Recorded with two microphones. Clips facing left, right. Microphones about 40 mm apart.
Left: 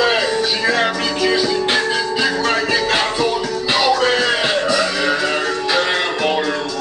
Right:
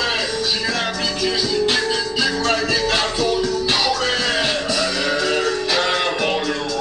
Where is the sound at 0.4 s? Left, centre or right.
Left.